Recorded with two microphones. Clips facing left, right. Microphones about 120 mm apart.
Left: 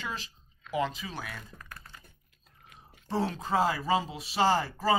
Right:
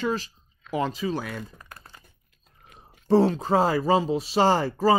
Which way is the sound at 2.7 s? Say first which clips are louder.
Right 13 dB; 35° right (ahead or behind).